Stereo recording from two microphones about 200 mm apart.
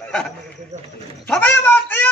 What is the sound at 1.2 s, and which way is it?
Speech, 10° left (ahead or behind).